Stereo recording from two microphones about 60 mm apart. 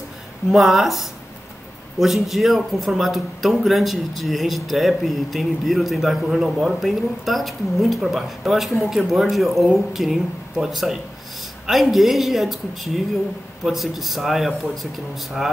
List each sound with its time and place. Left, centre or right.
0.5 s speech: centre